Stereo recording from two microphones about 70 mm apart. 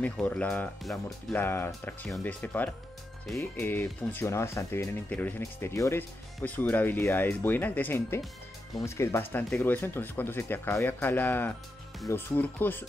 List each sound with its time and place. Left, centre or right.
0.0 s speech: centre
1.3 s speech: left
4.3 s speech: left
6.4 s speech: left
8.8 s speech: left
9.5 s speech: left